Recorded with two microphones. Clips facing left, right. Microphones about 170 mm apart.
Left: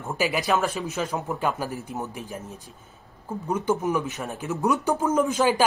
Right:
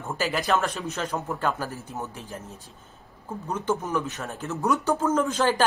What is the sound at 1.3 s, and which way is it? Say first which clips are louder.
Speech: left 1 dB; 15° left (ahead or behind).